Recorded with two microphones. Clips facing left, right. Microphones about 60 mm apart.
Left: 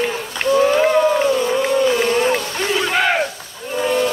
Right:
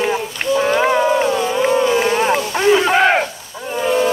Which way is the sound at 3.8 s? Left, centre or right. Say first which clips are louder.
Right 2 dB; centre.